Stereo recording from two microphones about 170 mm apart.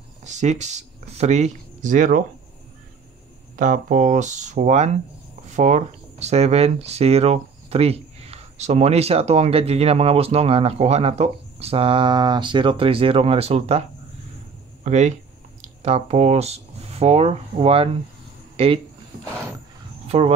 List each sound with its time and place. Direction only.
0.2 s speech: 45° right (ahead or behind)
3.5 s speech: 50° right (ahead or behind)
20.1 s speech: 35° right (ahead or behind)